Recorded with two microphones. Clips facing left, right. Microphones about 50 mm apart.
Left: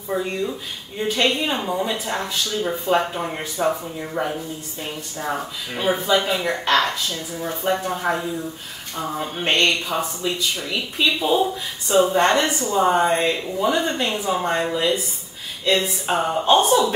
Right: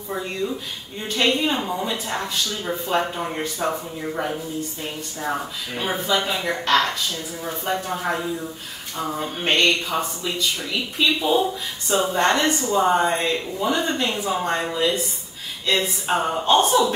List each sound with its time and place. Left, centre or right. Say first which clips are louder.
0.1 s speech: left 2 dB; centre
5.8 s speech: left 3 dB; centre